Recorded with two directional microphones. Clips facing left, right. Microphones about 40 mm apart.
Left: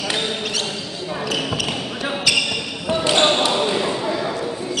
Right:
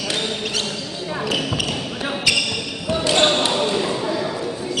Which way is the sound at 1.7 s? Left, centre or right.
Centre.